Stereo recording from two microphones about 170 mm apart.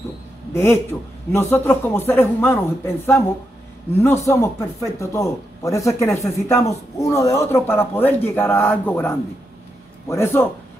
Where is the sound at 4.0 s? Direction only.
15° left (ahead or behind).